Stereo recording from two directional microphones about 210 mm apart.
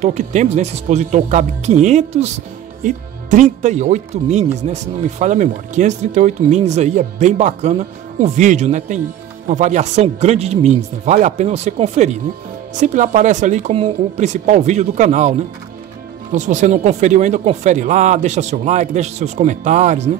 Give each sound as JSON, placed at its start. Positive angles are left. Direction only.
{"t": 0.0, "sound": "speech", "side_deg": -35}